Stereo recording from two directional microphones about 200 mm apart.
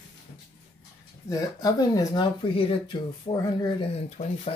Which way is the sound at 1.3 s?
20° left (ahead or behind).